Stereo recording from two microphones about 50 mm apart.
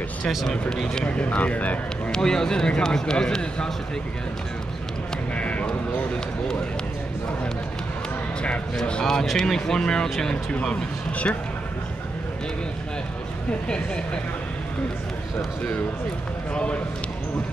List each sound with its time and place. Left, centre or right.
0.2 s speech: centre
1.0 s speech: left
2.0 s a man's voice: centre
5.3 s a sound: left
8.8 s a man's voice: centre
16.5 s speech: left